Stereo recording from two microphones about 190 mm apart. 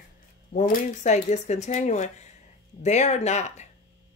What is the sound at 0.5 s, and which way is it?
Speech, 40° left (ahead or behind).